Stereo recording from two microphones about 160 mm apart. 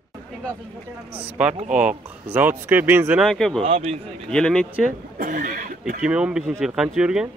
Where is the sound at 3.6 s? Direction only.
40° right (ahead or behind).